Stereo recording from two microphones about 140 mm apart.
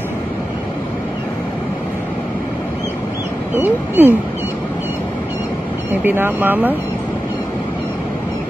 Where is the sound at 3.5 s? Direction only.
15° right (ahead or behind).